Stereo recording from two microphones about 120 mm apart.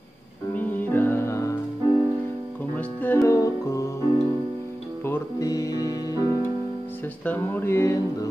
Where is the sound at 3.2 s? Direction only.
25° left (ahead or behind).